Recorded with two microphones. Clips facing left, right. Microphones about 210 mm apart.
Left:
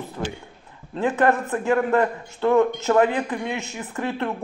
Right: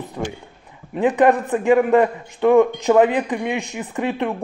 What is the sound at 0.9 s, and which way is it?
A man's voice, 15° right (ahead or behind).